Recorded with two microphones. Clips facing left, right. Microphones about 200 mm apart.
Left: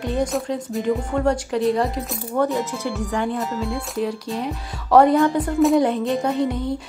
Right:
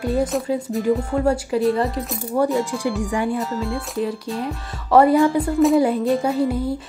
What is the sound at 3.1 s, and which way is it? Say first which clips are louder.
Speech: left 1 dB; 10° right (ahead or behind).